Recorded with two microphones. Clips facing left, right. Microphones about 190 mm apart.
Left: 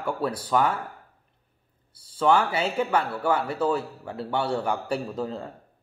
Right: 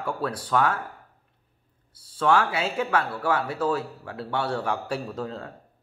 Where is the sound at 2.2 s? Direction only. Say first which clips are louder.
Left 1 dB; centre (ahead or behind).